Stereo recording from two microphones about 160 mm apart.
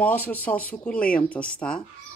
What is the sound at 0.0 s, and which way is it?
Speech, 10° left (ahead or behind).